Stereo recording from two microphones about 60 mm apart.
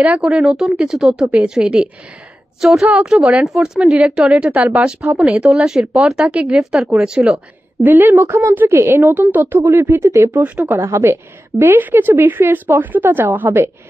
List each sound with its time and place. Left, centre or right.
0.0 s speech: right
0.3 s speech: centre
4.4 s speech: centre
4.7 s speech: centre
6.2 s speech: centre
6.6 s speech: centre
7.8 s a woman's voice: right
9.1 s a woman's voice: right
11.8 s a woman's voice: right